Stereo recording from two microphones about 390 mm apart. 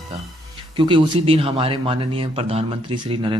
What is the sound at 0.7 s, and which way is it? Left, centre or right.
A man's voice, centre.